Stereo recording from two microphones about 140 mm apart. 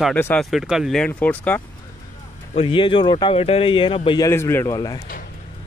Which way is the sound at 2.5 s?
40° left (ahead or behind).